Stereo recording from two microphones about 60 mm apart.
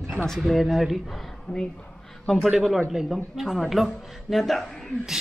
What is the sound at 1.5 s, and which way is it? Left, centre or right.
Speech, left.